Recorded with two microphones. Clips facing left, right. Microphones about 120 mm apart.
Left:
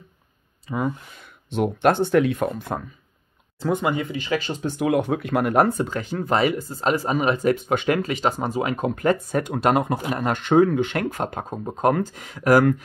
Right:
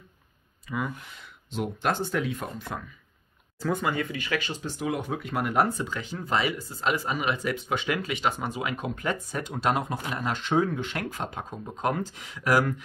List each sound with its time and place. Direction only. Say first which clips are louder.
0.7 s speech: left 6 dB; 35° left (ahead or behind)
1.2 s speech: left 8 dB; 60° left (ahead or behind)
3.5 s speech: left 5 dB; 20° left (ahead or behind)
4.5 s speech: left 8 dB; 55° left (ahead or behind)